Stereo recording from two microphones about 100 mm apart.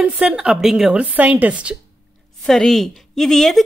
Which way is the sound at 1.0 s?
15° right (ahead or behind).